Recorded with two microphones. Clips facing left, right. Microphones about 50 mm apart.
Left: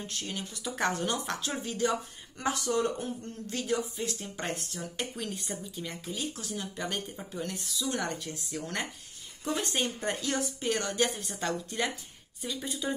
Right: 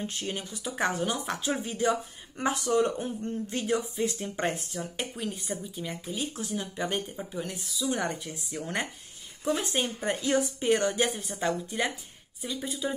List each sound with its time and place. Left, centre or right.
0.0 s speech: right
4.6 s speech: centre
6.3 s speech: right; by 7.9 s centre
7.9 s speech: centre
10.2 s speech: centre